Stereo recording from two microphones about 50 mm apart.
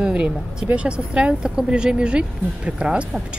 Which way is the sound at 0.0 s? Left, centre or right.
Right.